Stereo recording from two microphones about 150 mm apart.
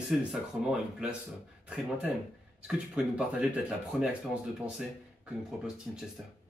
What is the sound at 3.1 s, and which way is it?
Speech, 10° right (ahead or behind).